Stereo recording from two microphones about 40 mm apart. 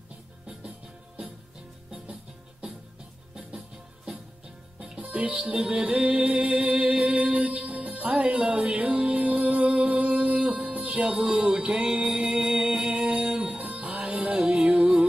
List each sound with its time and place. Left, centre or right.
3.5 s music: centre
5.2 s music: right
7.3 s music: right
8.1 s music: right
11.9 s music: centre
12.4 s music: right
14.6 s music: centre